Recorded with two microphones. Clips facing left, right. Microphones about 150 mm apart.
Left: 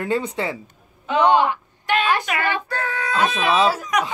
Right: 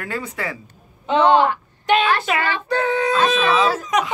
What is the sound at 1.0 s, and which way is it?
Female singing, 25° right (ahead or behind).